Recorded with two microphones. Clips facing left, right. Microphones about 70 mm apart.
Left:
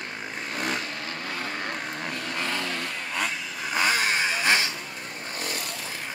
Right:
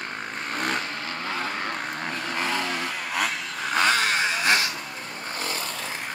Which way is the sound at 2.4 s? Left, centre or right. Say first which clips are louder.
Right 4 dB; centre.